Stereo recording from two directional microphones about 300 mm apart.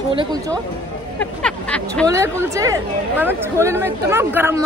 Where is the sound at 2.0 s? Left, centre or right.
Centre.